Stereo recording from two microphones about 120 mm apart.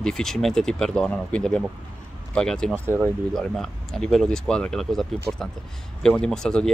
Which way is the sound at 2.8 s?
15° right (ahead or behind).